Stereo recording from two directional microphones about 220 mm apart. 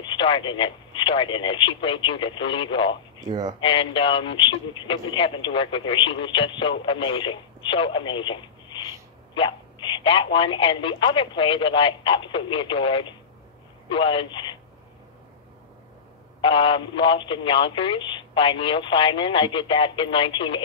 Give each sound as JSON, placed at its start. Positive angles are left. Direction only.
{"t": 0.0, "sound": "speech", "side_deg": 20}
{"t": 3.3, "sound": "speech", "side_deg": -20}
{"t": 3.6, "sound": "speech", "side_deg": 25}
{"t": 16.3, "sound": "speech", "side_deg": 20}